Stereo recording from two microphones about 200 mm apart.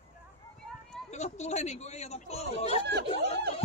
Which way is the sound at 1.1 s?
35° left (ahead or behind).